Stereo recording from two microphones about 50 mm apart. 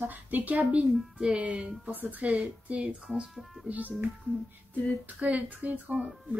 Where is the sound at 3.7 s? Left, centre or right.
Right.